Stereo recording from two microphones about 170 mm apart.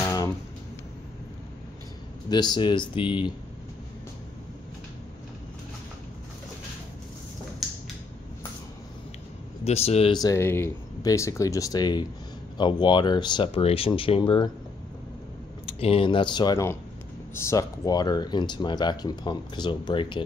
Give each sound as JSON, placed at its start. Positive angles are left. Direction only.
{"t": 0.0, "sound": "music", "side_deg": 20}
{"t": 2.2, "sound": "speech", "side_deg": 25}
{"t": 7.6, "sound": "a sound", "side_deg": 0}
{"t": 9.7, "sound": "speech", "side_deg": 35}
{"t": 10.1, "sound": "speech", "side_deg": 20}
{"t": 15.6, "sound": "speech", "side_deg": 35}